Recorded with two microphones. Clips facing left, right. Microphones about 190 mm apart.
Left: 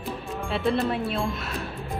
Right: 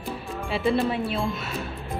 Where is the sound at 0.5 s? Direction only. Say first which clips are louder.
Right 1 dB; centre (ahead or behind).